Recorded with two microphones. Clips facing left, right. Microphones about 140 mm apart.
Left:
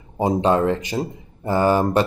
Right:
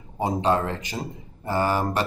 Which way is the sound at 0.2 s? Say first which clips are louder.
Left 5 dB; 20° left (ahead or behind).